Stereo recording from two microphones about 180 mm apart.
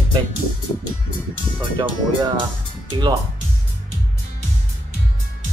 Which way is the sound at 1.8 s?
25° right (ahead or behind).